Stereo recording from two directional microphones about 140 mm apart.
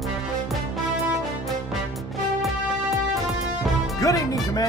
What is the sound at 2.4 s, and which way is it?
Music, centre (ahead or behind).